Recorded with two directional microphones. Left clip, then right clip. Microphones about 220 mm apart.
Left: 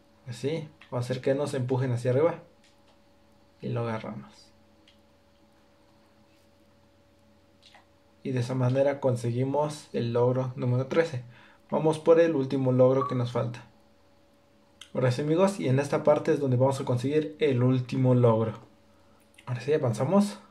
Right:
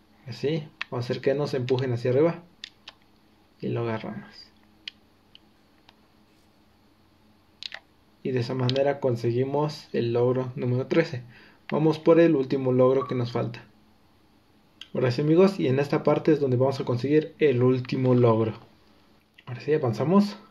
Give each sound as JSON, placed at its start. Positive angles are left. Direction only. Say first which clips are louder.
{"t": 0.4, "sound": "speech", "louder": "right 4 dB", "side_deg": -30}
{"t": 3.6, "sound": "speech", "louder": "right 3 dB", "side_deg": -30}
{"t": 8.2, "sound": "speech", "louder": "right 3 dB", "side_deg": -30}
{"t": 14.8, "sound": "speech", "louder": "right 2 dB", "side_deg": -25}